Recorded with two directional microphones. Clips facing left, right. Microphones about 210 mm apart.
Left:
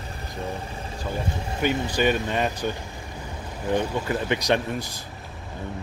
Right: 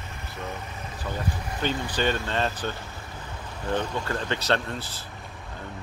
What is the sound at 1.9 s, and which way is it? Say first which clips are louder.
Speech: left 4 dB; 15° left (ahead or behind).